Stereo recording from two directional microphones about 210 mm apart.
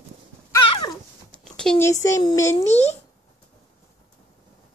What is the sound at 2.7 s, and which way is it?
Speech, 30° left (ahead or behind).